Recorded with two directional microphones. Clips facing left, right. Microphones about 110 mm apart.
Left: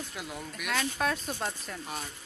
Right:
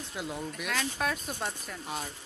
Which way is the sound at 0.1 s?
25° right (ahead or behind).